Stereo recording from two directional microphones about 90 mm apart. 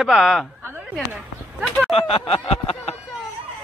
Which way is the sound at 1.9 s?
90° left.